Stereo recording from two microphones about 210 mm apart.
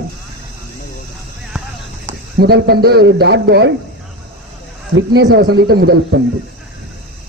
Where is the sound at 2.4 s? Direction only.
50° right (ahead or behind).